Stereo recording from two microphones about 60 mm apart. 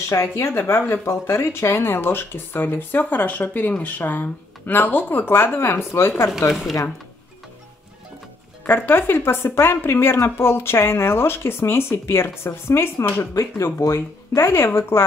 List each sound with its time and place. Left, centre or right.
0.1 s speech: left
8.6 s speech: left
13.2 s speech: left